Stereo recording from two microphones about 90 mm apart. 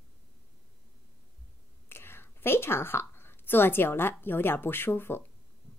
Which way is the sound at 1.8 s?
25° left (ahead or behind).